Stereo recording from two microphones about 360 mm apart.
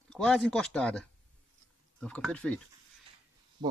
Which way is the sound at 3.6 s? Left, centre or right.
Centre.